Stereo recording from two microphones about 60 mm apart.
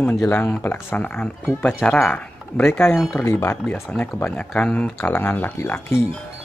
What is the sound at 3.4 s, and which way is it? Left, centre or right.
Speech, left.